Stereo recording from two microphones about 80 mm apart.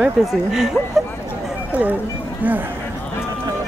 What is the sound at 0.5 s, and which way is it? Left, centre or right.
Speech, centre.